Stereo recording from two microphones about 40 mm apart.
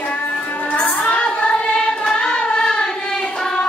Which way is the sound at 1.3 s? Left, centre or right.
Left.